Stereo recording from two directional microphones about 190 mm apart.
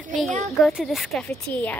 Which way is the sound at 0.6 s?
Centre (ahead or behind).